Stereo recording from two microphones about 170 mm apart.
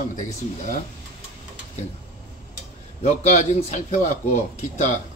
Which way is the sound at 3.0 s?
45° left (ahead or behind).